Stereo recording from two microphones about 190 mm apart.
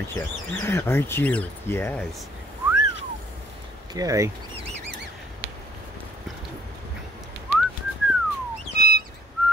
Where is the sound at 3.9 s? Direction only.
15° right (ahead or behind).